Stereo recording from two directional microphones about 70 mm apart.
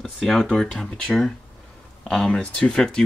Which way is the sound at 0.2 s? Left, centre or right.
Centre.